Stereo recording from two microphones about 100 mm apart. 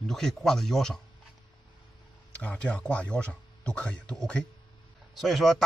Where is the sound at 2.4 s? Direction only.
15° left (ahead or behind).